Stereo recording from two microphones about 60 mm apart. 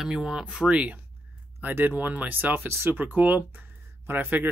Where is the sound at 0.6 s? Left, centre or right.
Right.